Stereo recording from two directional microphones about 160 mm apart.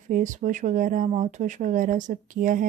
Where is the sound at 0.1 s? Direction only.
50° right (ahead or behind).